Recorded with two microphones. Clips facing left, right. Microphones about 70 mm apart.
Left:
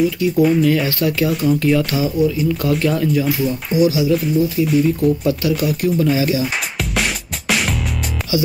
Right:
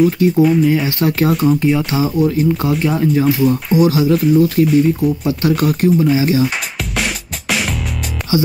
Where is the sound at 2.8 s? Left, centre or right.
Centre.